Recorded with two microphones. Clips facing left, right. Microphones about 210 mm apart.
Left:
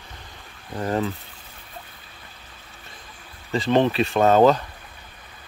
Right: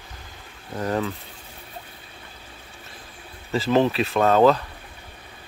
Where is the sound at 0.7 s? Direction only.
Centre (ahead or behind).